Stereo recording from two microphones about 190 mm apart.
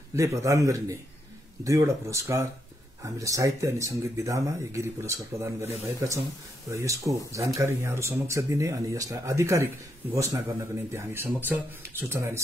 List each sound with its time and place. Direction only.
0.1 s speech: 15° right (ahead or behind)